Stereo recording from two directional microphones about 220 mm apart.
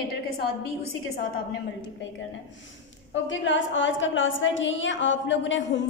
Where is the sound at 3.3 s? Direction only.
60° left (ahead or behind).